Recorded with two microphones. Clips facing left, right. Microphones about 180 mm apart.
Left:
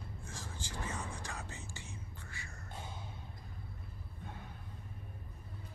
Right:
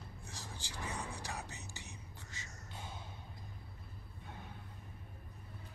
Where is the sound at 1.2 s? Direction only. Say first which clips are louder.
Even; 15° right (ahead or behind).